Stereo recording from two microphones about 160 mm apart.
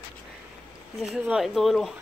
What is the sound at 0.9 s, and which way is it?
Speech, 5° right (ahead or behind).